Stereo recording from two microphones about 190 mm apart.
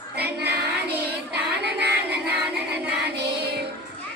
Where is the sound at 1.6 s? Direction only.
60° right (ahead or behind).